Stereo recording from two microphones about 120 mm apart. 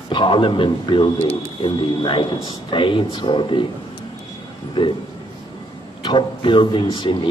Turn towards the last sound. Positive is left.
turn(degrees=45)  # may be behind; listen again after turning